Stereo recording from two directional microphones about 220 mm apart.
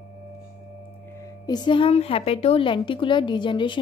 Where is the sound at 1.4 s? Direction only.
20° left (ahead or behind).